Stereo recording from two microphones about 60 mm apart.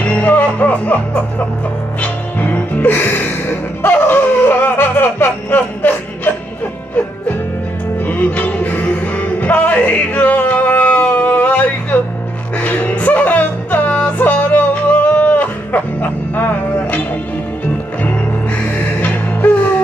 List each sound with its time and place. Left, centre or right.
0.0 s music: left
8.0 s music: left
18.9 s music: left